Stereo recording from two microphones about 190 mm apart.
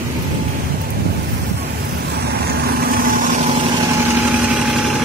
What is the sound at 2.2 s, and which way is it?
Vehicle, 55° right (ahead or behind).